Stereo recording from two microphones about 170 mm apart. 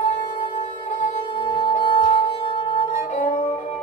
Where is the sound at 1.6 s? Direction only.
30° left (ahead or behind).